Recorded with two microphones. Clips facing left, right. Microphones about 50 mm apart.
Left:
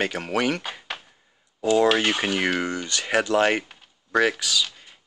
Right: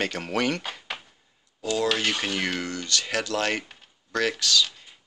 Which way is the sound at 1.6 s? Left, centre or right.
Left.